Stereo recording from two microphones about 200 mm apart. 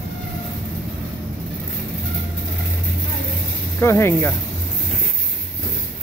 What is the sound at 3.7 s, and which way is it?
Speech, 10° left (ahead or behind).